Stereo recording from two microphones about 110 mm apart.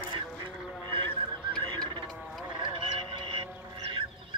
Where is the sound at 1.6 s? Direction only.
45° right (ahead or behind).